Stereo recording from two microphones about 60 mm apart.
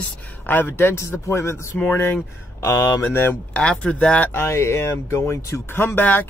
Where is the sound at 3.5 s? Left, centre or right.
Centre.